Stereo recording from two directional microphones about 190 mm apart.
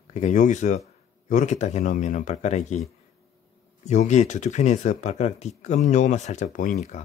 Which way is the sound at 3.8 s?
40° left (ahead or behind).